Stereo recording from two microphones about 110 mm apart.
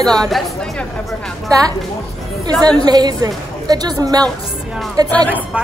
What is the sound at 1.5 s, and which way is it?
Speech, 30° right (ahead or behind).